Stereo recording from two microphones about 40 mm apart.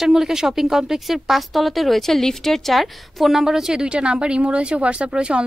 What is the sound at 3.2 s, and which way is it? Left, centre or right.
A woman's voice, centre.